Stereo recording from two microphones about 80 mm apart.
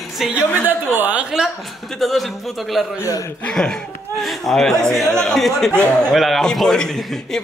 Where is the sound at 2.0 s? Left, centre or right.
Centre.